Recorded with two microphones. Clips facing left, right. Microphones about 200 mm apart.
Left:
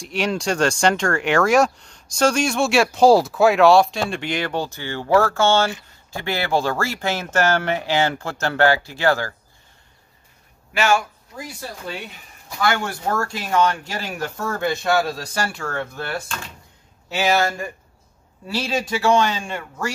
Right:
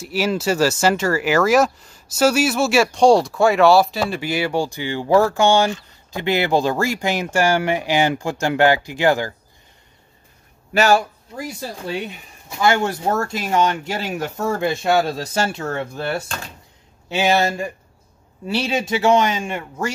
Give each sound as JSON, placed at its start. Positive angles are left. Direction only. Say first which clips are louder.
{"t": 0.0, "sound": "speech", "louder": "right 2 dB", "side_deg": -5}
{"t": 10.7, "sound": "speech", "louder": "right 4 dB", "side_deg": -40}